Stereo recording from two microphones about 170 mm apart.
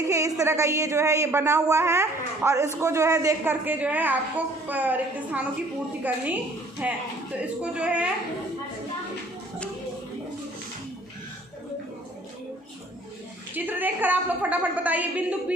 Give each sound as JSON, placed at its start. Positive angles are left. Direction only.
{"t": 0.1, "sound": "speech", "side_deg": -20}
{"t": 13.7, "sound": "speech", "side_deg": -10}